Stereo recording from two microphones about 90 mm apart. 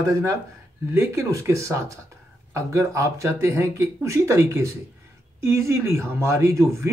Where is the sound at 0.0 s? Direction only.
35° right (ahead or behind).